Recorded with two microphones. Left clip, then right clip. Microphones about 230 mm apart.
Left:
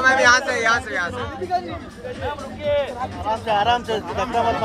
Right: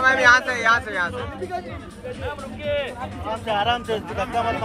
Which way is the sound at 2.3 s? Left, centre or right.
Left.